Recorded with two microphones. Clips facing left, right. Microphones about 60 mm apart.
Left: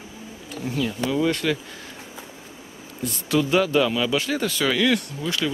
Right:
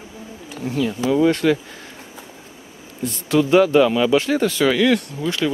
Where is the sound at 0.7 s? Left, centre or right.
Centre.